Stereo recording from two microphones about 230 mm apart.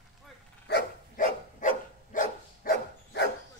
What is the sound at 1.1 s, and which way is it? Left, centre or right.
Dog, left.